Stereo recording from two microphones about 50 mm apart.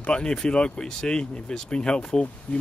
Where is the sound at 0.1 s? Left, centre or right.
Centre.